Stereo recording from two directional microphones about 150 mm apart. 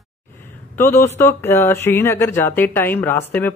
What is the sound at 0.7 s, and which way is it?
Speech, 15° left (ahead or behind).